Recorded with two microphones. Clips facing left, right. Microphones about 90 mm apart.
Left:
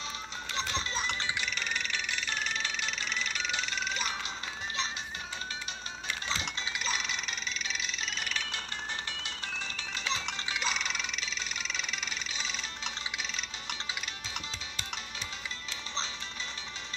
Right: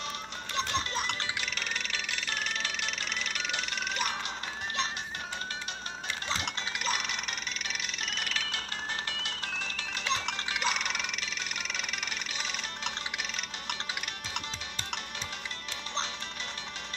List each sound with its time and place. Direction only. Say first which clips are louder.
0.6 s music: right 3 dB; 55° right (ahead or behind)
6.3 s chink: right 3 dB; 55° right (ahead or behind); by 8.6 s 90° right
9.1 s music: right 2 dB; 65° right (ahead or behind)